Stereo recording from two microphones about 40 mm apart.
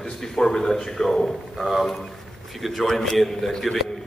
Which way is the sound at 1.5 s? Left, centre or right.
Centre.